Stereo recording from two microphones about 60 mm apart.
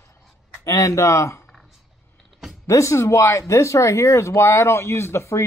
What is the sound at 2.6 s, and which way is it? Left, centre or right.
Speech, left.